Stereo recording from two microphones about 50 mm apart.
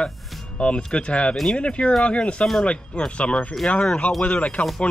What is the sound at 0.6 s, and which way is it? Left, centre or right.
Speech, left.